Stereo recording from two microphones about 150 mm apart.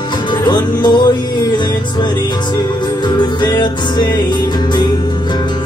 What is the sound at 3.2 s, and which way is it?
Music, 30° left (ahead or behind).